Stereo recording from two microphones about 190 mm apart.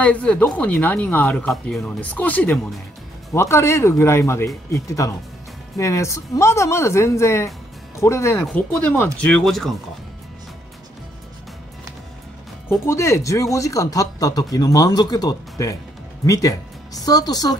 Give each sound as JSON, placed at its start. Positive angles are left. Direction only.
{"t": 0.0, "sound": "speech", "side_deg": 5}
{"t": 12.8, "sound": "speech", "side_deg": 15}